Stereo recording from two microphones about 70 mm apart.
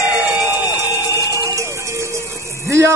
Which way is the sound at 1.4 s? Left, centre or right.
Right.